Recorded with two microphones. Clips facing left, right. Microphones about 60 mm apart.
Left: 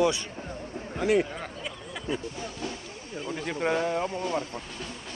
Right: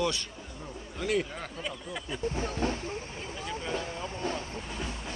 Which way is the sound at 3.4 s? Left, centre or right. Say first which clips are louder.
Left 8 dB; left.